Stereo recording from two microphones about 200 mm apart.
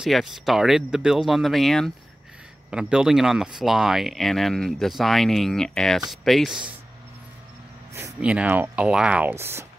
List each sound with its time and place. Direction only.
0.0 s speech: centre (ahead or behind)
7.9 s speech: 10° right (ahead or behind)